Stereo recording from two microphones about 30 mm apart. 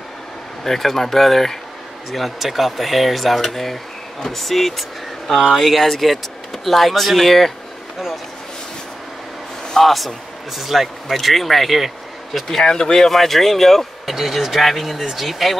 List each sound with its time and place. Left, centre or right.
0.7 s speech: centre
9.8 s speech: centre
12.6 s speech: left
13.0 s speech: centre
14.0 s speech: centre